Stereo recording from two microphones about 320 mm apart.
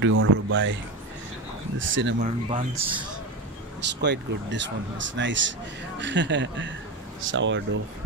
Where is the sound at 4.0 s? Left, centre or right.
Right.